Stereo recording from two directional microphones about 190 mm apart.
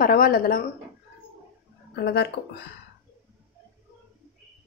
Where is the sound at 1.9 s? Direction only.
60° left (ahead or behind).